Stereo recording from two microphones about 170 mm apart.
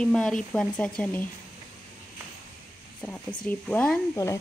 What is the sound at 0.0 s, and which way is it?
Speech, 5° left (ahead or behind).